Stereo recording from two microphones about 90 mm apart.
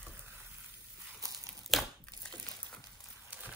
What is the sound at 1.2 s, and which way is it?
Crumpling, 40° right (ahead or behind).